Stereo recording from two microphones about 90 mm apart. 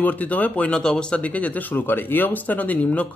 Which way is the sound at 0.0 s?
15° left (ahead or behind).